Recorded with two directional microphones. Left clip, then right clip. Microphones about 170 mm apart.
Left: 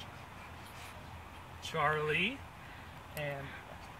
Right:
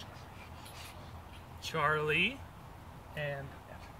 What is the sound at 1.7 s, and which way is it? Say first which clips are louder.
Speech: right 1 dB; 20° right (ahead or behind).